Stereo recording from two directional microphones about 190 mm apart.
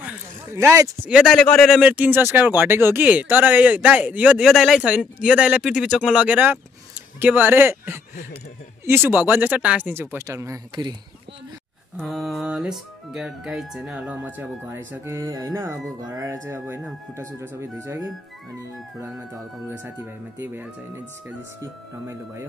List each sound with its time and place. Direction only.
0.6 s speech: 15° right (ahead or behind)
1.1 s speech: centre (ahead or behind)
1.8 s speech: 10° right (ahead or behind)
12.0 s speech: centre (ahead or behind)
20.3 s speech: 10° right (ahead or behind)